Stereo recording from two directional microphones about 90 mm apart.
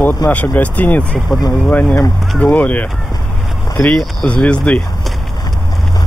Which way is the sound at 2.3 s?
10° left (ahead or behind).